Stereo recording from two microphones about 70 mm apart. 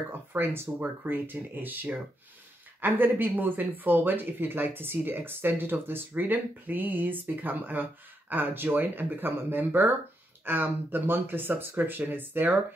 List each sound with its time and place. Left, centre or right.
0.3 s speech: right